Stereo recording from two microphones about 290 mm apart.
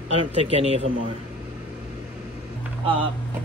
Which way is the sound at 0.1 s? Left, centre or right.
Right.